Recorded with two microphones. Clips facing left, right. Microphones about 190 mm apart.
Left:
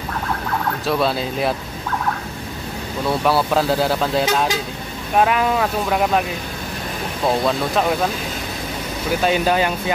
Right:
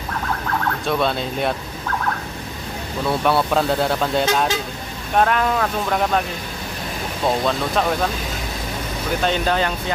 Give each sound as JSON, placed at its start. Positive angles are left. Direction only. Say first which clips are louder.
{"t": 0.8, "sound": "speech", "louder": "left 2 dB", "side_deg": 0}
{"t": 3.3, "sound": "speech", "louder": "left 1 dB", "side_deg": 0}
{"t": 7.2, "sound": "speech", "louder": "left 1 dB", "side_deg": 5}
{"t": 9.2, "sound": "speech", "louder": "left 3 dB", "side_deg": 10}